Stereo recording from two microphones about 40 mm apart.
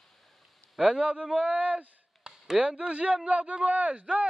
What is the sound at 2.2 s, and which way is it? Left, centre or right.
Speech, right.